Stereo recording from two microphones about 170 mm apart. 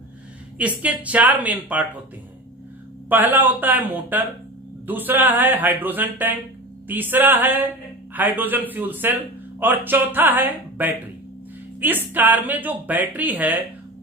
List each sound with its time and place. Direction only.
0.6 s a man's voice: 10° right (ahead or behind)
3.1 s a man's voice: 10° right (ahead or behind)